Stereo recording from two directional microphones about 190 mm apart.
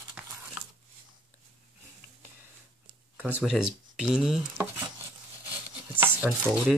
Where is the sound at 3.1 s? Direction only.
10° right (ahead or behind).